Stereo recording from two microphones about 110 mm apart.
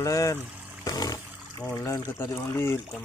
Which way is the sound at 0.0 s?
30° left (ahead or behind).